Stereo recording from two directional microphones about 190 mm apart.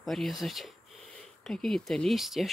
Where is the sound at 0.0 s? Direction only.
Centre (ahead or behind).